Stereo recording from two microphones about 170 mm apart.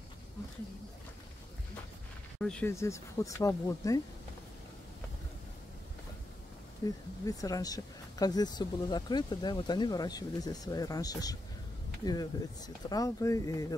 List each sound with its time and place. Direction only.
2.4 s speech: 5° left (ahead or behind)
2.7 s speech: 15° left (ahead or behind)
6.8 s speech: 25° left (ahead or behind)